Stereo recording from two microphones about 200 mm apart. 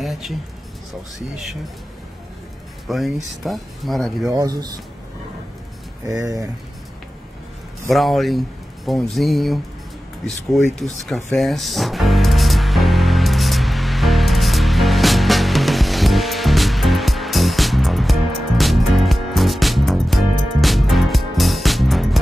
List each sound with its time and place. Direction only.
0.0 s a sound: centre (ahead or behind)
2.9 s speech: centre (ahead or behind)
4.3 s speech: 15° right (ahead or behind)
6.0 s speech: 15° right (ahead or behind)
7.9 s speech: centre (ahead or behind)
10.8 s speech: centre (ahead or behind)
11.3 s music: centre (ahead or behind)